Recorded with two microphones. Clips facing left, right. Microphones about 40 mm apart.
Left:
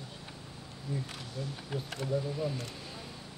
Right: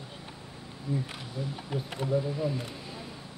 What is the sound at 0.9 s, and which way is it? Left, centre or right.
Speech, centre.